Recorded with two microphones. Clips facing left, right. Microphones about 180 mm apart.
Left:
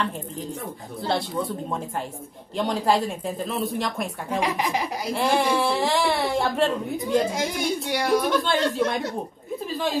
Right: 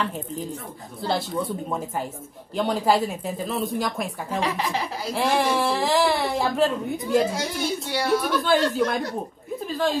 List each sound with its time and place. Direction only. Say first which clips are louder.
1.0 s speech: even; centre (ahead or behind)
4.4 s speech: left 1 dB; 15° left (ahead or behind)
5.1 s speech: even; centre (ahead or behind)
7.3 s speech: left 1 dB; 15° left (ahead or behind)
8.1 s speech: right 1 dB; centre (ahead or behind)